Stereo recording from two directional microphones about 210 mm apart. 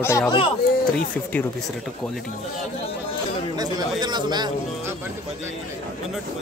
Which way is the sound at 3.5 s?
20° right (ahead or behind).